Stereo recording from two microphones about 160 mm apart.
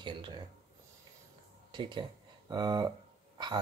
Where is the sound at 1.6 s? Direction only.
30° right (ahead or behind).